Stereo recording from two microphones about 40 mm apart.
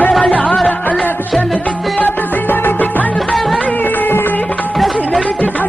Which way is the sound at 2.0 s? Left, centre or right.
Left.